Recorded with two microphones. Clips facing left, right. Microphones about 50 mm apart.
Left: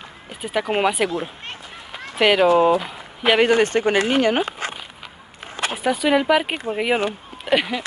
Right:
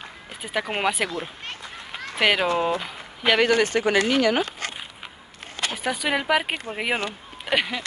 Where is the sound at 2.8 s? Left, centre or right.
Centre.